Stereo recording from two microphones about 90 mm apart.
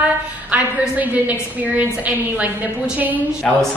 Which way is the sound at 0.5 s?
15° right (ahead or behind).